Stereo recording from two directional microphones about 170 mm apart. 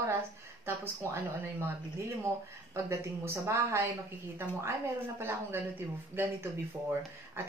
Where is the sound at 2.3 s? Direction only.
15° right (ahead or behind).